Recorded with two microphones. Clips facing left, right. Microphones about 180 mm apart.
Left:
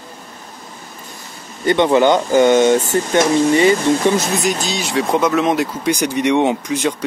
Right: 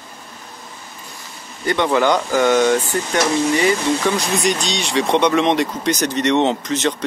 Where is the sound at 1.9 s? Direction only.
20° left (ahead or behind).